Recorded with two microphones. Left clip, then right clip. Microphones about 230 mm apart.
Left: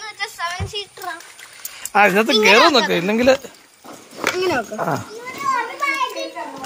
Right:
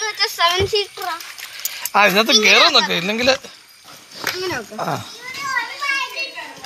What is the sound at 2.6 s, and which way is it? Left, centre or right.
A man's voice, left.